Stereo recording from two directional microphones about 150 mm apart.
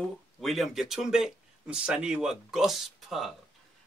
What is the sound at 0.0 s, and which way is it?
A man's voice, centre (ahead or behind).